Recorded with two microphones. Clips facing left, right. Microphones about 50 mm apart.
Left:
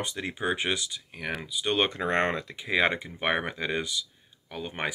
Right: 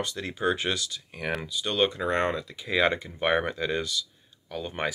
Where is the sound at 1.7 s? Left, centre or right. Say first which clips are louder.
Right 1 dB; left.